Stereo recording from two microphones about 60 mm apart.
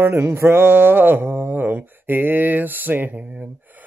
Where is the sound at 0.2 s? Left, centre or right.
Right.